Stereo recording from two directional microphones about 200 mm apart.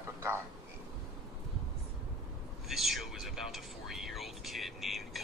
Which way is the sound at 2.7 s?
Centre (ahead or behind).